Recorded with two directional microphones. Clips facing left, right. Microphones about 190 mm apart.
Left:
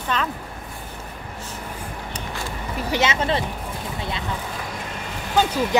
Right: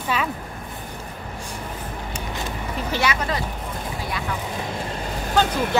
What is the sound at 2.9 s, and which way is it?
Speech, 20° left (ahead or behind).